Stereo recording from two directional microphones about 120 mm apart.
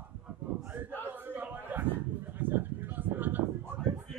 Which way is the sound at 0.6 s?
15° right (ahead or behind).